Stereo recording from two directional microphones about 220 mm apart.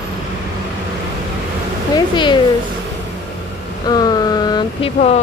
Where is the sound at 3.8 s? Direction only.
20° left (ahead or behind).